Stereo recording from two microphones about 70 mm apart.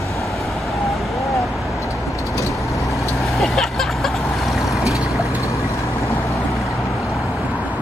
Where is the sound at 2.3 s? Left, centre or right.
Left.